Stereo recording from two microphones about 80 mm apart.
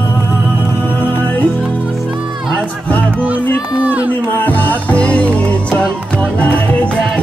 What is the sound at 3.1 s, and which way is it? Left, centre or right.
Speech, centre.